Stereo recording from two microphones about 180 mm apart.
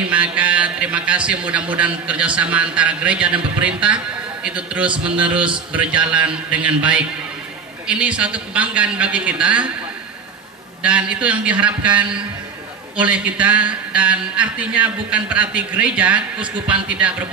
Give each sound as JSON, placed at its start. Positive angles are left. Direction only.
{"t": 0.0, "sound": "a sound", "side_deg": -5}
{"t": 2.0, "sound": "a man's voice", "side_deg": -5}
{"t": 4.8, "sound": "a man's voice", "side_deg": -25}
{"t": 5.1, "sound": "a man's voice", "side_deg": -5}
{"t": 10.8, "sound": "a man's voice", "side_deg": -5}